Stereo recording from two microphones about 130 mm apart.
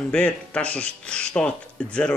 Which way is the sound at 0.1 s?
10° left (ahead or behind).